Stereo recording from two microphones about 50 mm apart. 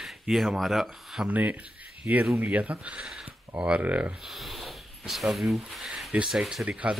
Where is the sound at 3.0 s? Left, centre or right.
Centre.